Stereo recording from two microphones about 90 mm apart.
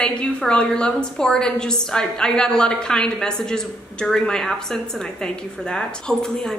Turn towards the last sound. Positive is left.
turn(degrees=5)  # may be behind; listen again after turning